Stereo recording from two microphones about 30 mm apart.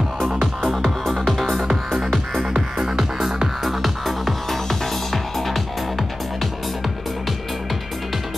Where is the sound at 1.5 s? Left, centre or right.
Centre.